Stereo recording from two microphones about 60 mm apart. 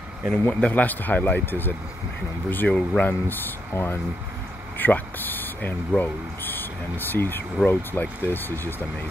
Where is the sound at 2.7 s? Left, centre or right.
Centre.